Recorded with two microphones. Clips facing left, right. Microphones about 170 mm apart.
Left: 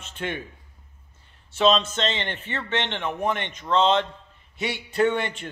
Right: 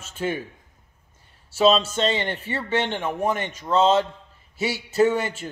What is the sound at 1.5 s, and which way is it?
A man's voice, 5° right (ahead or behind).